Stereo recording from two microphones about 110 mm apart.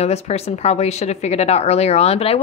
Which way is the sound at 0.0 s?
75° left (ahead or behind).